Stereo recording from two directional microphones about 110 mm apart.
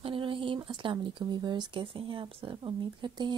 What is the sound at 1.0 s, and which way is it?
Speech, 45° right (ahead or behind).